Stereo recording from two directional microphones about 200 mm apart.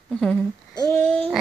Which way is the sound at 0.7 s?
20° left (ahead or behind).